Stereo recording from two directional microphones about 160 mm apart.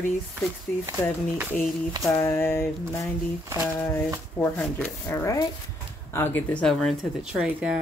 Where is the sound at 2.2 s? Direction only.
15° left (ahead or behind).